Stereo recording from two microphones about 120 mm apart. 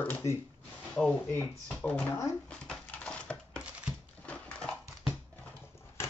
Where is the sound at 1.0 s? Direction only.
5° left (ahead or behind).